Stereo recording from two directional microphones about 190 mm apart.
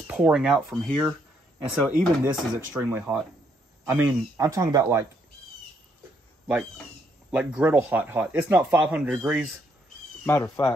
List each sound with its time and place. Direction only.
0.0 s speech: 5° right (ahead or behind)
6.4 s speech: 5° right (ahead or behind)
10.2 s speech: 10° left (ahead or behind)